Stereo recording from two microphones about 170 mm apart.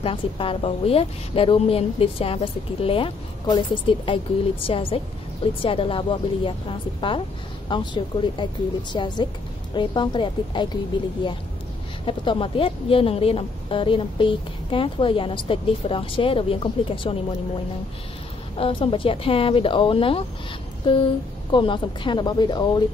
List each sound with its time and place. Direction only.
0.0 s a woman's voice: 30° left (ahead or behind)
18.6 s a woman's voice: 30° left (ahead or behind)